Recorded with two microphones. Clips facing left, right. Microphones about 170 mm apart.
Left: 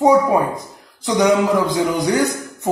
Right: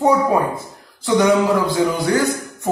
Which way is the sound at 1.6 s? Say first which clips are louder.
Even; 15° left (ahead or behind).